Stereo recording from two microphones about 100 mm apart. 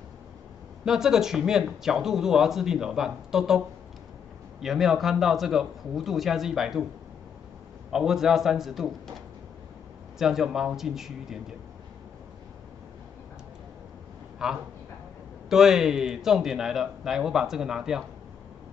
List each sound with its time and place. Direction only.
0.8 s speech: 5° right (ahead or behind)
7.9 s speech: 5° right (ahead or behind)
10.1 s speech: 5° right (ahead or behind)
14.4 s a man's voice: 5° right (ahead or behind)